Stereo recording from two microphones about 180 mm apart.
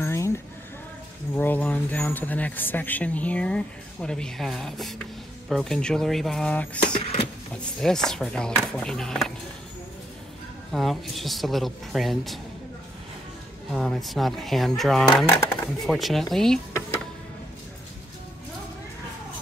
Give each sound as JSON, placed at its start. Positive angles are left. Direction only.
{"t": 0.0, "sound": "a sound", "side_deg": 15}
{"t": 1.3, "sound": "speech", "side_deg": 10}
{"t": 6.9, "sound": "speech", "side_deg": 30}
{"t": 7.8, "sound": "speech", "side_deg": 5}
{"t": 10.7, "sound": "speech", "side_deg": 0}
{"t": 13.7, "sound": "speech", "side_deg": 0}
{"t": 15.1, "sound": "speech", "side_deg": 10}
{"t": 15.8, "sound": "speech", "side_deg": 0}